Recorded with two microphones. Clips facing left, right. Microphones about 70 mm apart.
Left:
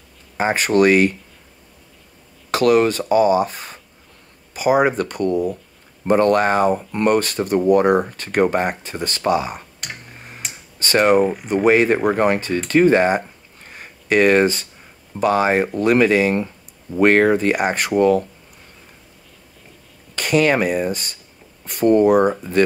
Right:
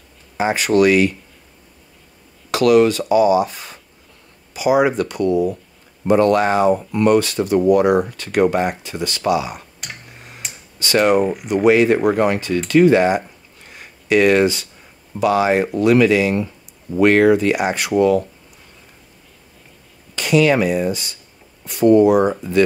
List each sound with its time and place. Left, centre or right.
0.4 s speech: left
2.5 s speech: left
10.8 s speech: left
11.1 s speech: centre
11.4 s speech: left
20.2 s speech: left